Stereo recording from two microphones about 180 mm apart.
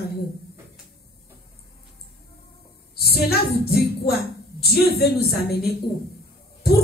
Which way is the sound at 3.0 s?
60° left (ahead or behind).